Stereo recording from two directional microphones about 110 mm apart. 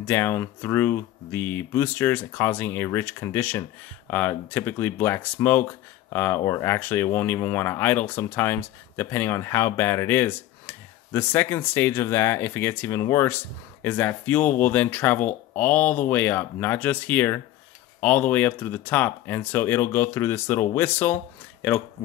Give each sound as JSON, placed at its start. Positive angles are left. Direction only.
{"t": 0.0, "sound": "speech", "side_deg": 20}
{"t": 13.8, "sound": "speech", "side_deg": 15}